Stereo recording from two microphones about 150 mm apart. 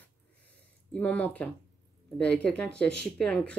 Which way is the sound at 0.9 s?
10° left (ahead or behind).